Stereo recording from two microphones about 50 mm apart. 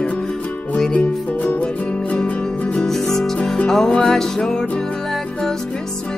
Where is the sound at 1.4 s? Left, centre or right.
Left.